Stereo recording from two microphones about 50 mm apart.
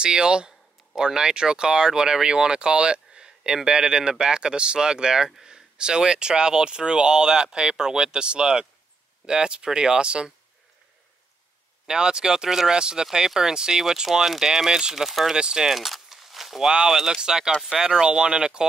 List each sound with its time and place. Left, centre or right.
0.0 s speech: centre
11.8 s speech: centre
15.0 s speech: centre
15.3 s speech: centre